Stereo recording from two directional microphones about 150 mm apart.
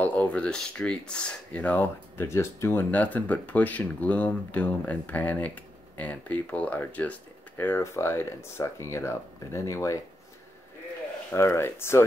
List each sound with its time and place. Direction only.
0.0 s speech: 10° left (ahead or behind)
11.3 s speech: 15° left (ahead or behind)